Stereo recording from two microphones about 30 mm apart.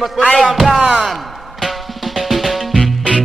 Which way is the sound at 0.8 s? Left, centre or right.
Right.